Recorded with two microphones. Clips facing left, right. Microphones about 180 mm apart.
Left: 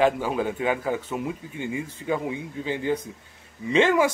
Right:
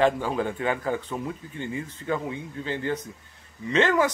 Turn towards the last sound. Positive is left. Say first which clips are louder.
# left 2 dB
turn(degrees=10)  # may be behind; listen again after turning